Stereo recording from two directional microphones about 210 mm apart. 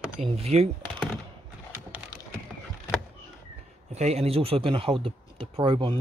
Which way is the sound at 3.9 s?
30° right (ahead or behind).